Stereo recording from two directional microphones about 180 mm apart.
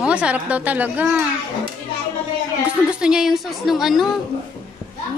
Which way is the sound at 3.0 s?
5° right (ahead or behind).